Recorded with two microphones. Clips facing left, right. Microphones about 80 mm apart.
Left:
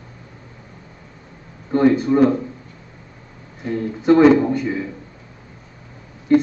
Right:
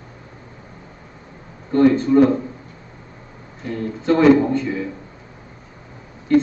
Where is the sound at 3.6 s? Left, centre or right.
Left.